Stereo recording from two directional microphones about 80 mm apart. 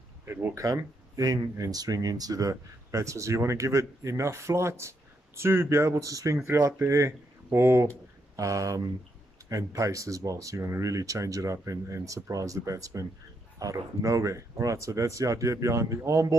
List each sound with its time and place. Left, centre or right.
0.2 s speech: right
0.7 s speech: right
8.4 s speech: right